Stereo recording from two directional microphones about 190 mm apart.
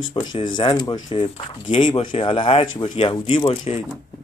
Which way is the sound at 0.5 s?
25° left (ahead or behind).